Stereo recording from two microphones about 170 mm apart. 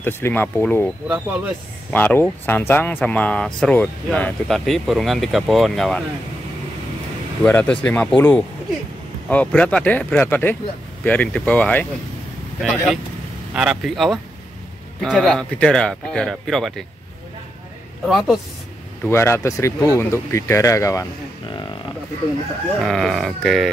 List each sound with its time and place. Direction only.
0.0 s speech: 10° left (ahead or behind)
1.0 s speech: 10° right (ahead or behind)
1.9 s speech: 10° left (ahead or behind)
7.4 s speech: 10° left (ahead or behind)
13.5 s speech: 5° right (ahead or behind)
18.0 s speech: centre (ahead or behind)
19.0 s speech: 15° left (ahead or behind)
22.8 s speech: centre (ahead or behind)